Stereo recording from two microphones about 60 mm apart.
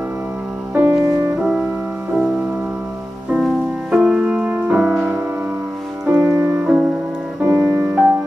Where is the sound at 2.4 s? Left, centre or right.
Right.